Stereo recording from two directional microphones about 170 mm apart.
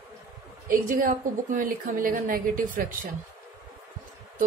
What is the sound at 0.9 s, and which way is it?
Speech, 55° right (ahead or behind).